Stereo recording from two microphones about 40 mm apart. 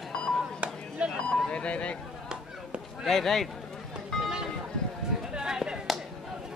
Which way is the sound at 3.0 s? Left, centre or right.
Centre.